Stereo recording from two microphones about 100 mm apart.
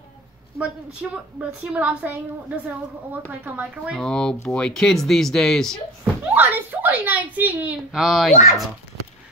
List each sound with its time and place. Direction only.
1.0 s speech: 5° right (ahead or behind)
3.9 s speech: 5° left (ahead or behind)
6.3 s speech: 20° right (ahead or behind)
7.9 s speech: 5° right (ahead or behind)